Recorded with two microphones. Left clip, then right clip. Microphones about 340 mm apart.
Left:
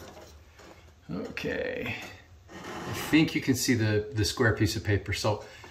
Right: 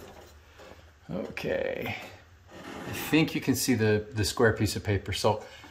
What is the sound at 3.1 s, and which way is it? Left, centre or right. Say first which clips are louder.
Speech: left 1 dB; centre.